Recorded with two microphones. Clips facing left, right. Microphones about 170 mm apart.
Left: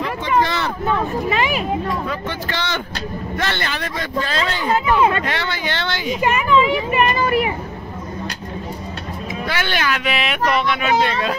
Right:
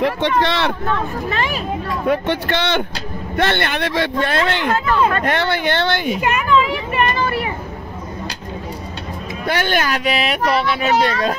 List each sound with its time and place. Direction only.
0.4 s speech: 70° right (ahead or behind)
0.8 s a child's voice: 10° left (ahead or behind)
2.0 s speech: 60° right (ahead or behind)
4.7 s a child's voice: 15° left (ahead or behind)
5.1 s speech: 50° right (ahead or behind)
6.2 s a child's voice: 5° left (ahead or behind)
9.5 s speech: 45° right (ahead or behind)